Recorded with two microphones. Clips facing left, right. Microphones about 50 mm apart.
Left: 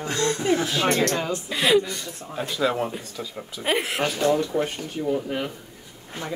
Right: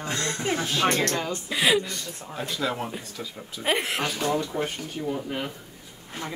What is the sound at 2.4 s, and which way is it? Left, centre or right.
Speech, centre.